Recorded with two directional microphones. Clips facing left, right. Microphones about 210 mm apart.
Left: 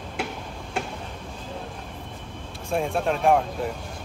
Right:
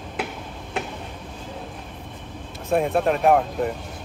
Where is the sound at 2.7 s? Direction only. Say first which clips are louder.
Right 4 dB; centre (ahead or behind).